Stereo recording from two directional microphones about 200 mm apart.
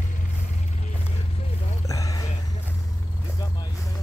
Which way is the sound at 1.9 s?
15° left (ahead or behind).